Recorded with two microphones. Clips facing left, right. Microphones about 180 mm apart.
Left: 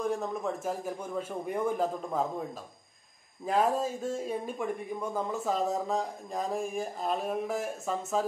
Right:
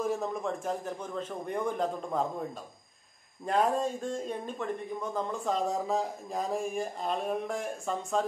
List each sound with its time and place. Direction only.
0.0 s speech: centre (ahead or behind)
3.4 s speech: centre (ahead or behind)